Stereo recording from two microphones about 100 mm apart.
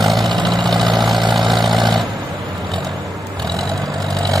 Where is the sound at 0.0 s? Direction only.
Centre (ahead or behind).